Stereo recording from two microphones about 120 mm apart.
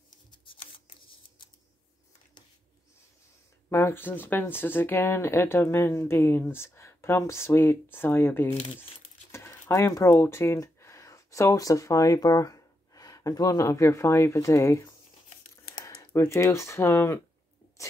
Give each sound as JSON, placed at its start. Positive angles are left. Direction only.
{"t": 0.5, "sound": "scissors", "side_deg": 45}
{"t": 3.7, "sound": "speech", "side_deg": 20}
{"t": 9.3, "sound": "a sound", "side_deg": 25}
{"t": 10.1, "sound": "speech", "side_deg": 20}
{"t": 15.8, "sound": "speech", "side_deg": 25}